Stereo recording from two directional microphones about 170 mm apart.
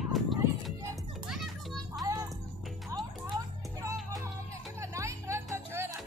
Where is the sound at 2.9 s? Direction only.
20° right (ahead or behind).